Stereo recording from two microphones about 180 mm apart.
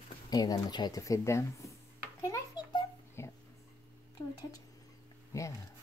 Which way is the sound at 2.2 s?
20° left (ahead or behind).